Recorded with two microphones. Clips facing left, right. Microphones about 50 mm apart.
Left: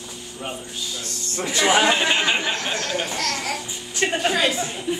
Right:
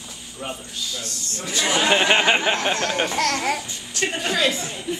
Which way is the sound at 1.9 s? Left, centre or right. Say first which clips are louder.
Right 3 dB; right.